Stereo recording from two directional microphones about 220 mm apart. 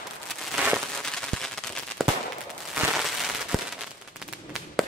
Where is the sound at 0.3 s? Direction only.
Centre (ahead or behind).